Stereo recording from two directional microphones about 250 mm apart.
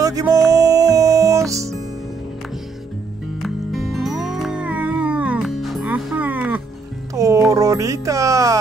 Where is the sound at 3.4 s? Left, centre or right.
Centre.